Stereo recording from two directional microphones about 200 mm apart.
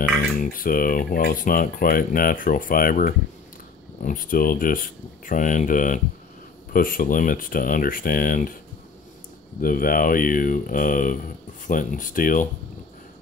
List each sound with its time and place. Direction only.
0.0 s cutlery: 45° left (ahead or behind)
4.0 s speech: 40° left (ahead or behind)
6.7 s cutlery: 45° left (ahead or behind)
9.6 s cutlery: 45° left (ahead or behind)
11.6 s speech: 40° left (ahead or behind)